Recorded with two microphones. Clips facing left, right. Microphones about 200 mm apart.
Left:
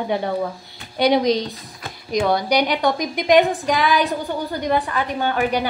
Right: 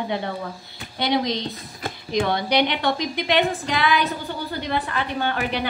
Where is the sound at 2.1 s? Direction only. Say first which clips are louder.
Left 3 dB; 40° left (ahead or behind).